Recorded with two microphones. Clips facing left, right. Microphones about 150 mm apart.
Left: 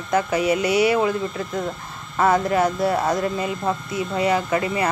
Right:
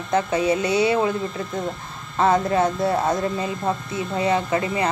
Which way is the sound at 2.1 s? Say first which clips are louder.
Even; 25° right (ahead or behind).